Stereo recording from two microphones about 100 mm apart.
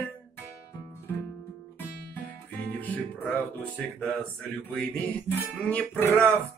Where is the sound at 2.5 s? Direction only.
15° left (ahead or behind).